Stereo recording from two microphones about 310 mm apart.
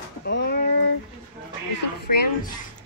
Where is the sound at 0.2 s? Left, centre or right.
Left.